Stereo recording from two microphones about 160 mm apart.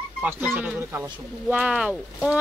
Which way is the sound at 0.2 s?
10° right (ahead or behind).